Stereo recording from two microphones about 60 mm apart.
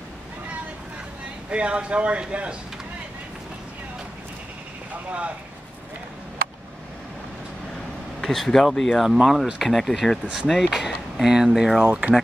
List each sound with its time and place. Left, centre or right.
1.5 s a man's voice: centre
8.2 s speech: centre
10.2 s speech: centre
10.5 s speech: centre